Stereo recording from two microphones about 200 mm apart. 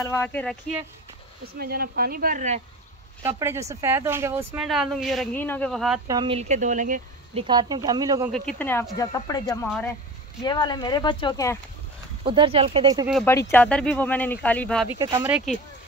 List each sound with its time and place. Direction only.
0.0 s speech: 10° left (ahead or behind)
1.4 s speech: 50° right (ahead or behind)
3.3 s speech: 15° right (ahead or behind)
4.6 s speech: centre (ahead or behind)
6.0 s speech: 20° right (ahead or behind); by 7.4 s 40° right (ahead or behind)
7.4 s speech: 20° right (ahead or behind)
8.5 s speech: 10° left (ahead or behind)
12.3 s speech: 25° right (ahead or behind)
13.1 s speech: 10° left (ahead or behind)
15.0 s speech: 20° right (ahead or behind)
15.2 s speech: 5° right (ahead or behind)